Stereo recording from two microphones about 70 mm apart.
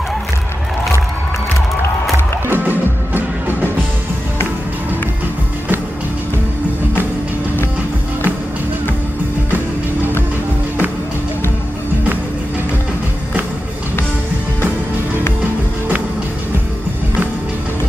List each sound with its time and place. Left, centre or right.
2.1 s music: right